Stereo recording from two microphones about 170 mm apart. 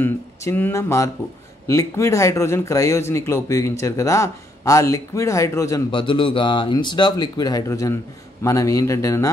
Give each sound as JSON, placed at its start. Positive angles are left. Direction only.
{"t": 0.0, "sound": "speech", "side_deg": 15}
{"t": 5.9, "sound": "speech", "side_deg": 30}